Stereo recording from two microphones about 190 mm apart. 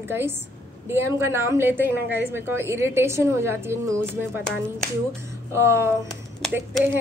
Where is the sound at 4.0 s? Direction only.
5° left (ahead or behind).